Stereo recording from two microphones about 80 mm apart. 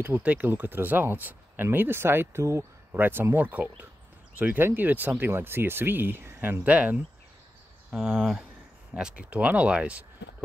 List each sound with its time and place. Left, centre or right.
0.0 s speech: centre
6.6 s speech: centre